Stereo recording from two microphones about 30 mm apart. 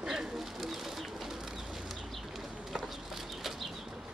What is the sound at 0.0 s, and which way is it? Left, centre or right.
Bird, centre.